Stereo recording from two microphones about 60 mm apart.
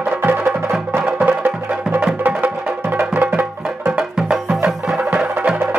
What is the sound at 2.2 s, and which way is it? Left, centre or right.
Music, right.